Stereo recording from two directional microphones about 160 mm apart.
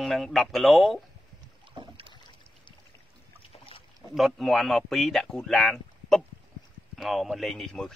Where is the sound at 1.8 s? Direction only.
35° right (ahead or behind).